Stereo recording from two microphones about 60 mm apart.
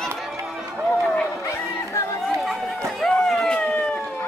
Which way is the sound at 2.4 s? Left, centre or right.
Centre.